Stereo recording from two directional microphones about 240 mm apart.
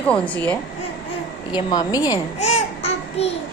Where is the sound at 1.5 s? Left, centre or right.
Centre.